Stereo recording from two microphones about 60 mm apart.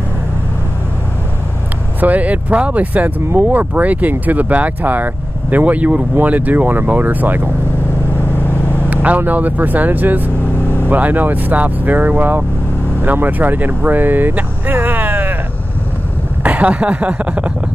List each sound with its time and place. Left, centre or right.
2.0 s speech: right
8.3 s vehicle: left
8.9 s speech: right
16.4 s speech: right